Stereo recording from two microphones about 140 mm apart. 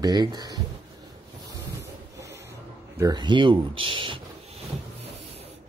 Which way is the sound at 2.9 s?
30° right (ahead or behind).